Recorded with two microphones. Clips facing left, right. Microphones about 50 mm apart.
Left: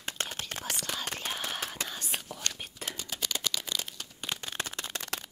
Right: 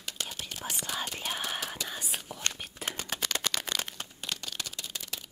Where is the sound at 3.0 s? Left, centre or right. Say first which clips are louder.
Right 2 dB; right.